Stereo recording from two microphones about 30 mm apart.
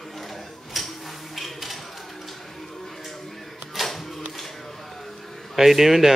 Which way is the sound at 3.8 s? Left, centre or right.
Centre.